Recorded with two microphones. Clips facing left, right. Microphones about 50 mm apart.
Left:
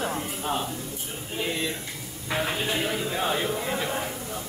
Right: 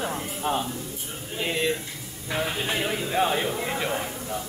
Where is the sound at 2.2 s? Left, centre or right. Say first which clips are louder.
Even; centre.